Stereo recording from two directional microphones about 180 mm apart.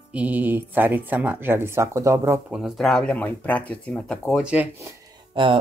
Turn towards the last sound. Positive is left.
turn(degrees=-30)  # may be behind; listen again after turning